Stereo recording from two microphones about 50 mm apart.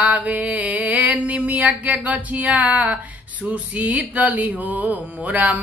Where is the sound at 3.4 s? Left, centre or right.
Right.